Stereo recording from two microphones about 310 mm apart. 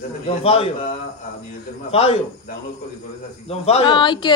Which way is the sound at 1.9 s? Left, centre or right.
Centre.